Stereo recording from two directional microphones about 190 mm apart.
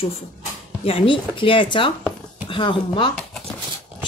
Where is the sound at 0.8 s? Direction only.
25° left (ahead or behind).